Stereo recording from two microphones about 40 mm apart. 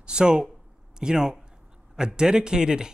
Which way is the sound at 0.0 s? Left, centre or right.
Right.